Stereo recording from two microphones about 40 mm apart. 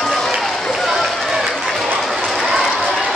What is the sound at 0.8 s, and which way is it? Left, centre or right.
Run, centre.